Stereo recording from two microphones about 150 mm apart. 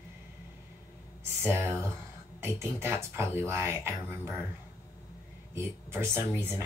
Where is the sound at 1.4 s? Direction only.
15° right (ahead or behind).